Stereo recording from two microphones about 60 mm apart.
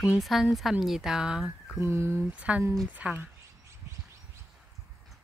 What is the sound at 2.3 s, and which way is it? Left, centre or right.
Speech, right.